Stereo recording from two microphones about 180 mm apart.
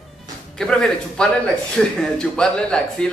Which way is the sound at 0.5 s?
5° left (ahead or behind).